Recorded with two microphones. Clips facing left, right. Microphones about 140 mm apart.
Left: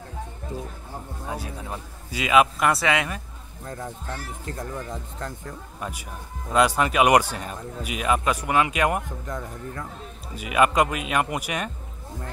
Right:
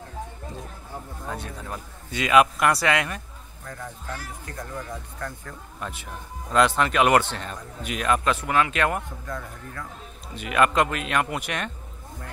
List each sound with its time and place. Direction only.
1.3 s a man's voice: 5° left (ahead or behind)
3.6 s speech: 25° left (ahead or behind)
5.2 s speech: 20° left (ahead or behind)
5.8 s speech: 10° left (ahead or behind)
10.3 s speech: 10° left (ahead or behind)